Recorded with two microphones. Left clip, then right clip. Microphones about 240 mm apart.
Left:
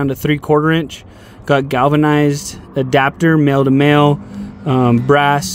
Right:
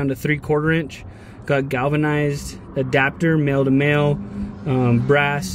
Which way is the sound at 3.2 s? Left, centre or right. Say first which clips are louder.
Left 6 dB; left.